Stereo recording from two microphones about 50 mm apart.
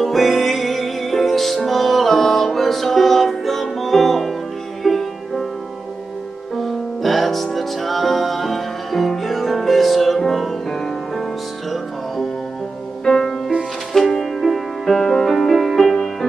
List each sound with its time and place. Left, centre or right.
0.0 s music: centre
6.5 s music: centre
13.0 s music: centre